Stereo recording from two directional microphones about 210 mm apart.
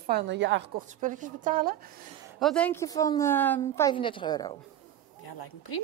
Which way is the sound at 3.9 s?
25° left (ahead or behind).